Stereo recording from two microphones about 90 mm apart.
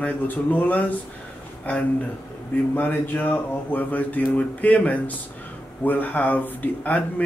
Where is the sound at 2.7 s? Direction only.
25° left (ahead or behind).